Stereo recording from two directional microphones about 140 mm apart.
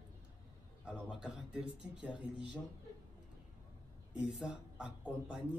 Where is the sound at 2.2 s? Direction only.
35° left (ahead or behind).